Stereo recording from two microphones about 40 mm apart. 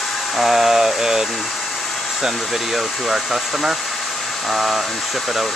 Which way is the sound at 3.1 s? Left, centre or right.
Centre.